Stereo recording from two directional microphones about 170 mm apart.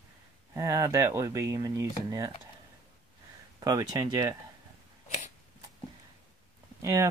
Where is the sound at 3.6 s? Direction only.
20° right (ahead or behind).